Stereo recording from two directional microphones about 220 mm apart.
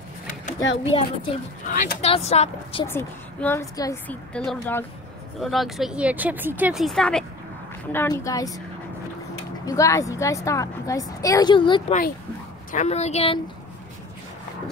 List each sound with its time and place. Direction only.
0.6 s speech: 60° left (ahead or behind)
1.7 s speech: 35° left (ahead or behind)
2.9 s a woman's voice: 10° left (ahead or behind)
9.7 s a woman's voice: 15° left (ahead or behind)